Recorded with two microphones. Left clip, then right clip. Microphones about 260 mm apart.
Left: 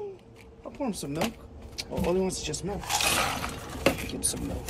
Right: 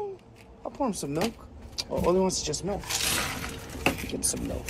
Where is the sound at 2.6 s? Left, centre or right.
Centre.